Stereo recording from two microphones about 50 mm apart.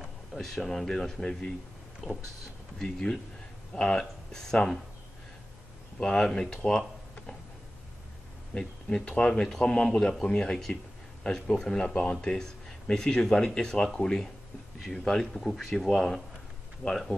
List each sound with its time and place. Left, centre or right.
0.3 s speech: centre
2.0 s speech: centre
2.8 s speech: centre
5.9 s speech: centre
8.5 s speech: centre